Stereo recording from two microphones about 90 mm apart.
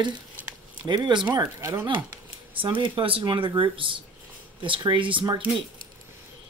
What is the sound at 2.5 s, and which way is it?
Speech, 70° right (ahead or behind).